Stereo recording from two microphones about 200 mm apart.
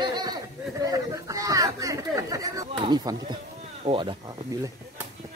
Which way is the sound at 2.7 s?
20° right (ahead or behind).